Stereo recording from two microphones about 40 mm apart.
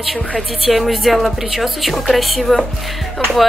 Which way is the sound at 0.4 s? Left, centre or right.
Centre.